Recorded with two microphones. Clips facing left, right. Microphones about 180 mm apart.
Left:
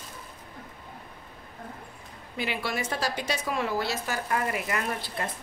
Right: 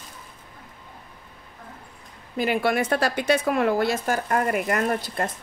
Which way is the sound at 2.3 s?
50° right (ahead or behind).